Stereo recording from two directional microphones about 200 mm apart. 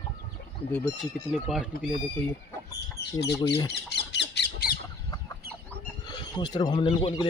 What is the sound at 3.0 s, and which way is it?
Squawk, 55° left (ahead or behind).